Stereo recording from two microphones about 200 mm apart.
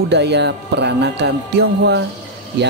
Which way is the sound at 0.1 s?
60° right (ahead or behind).